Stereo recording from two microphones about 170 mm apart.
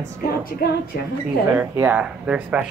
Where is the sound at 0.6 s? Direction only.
70° left (ahead or behind).